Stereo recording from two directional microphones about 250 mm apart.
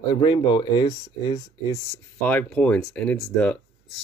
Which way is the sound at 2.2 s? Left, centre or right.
Centre.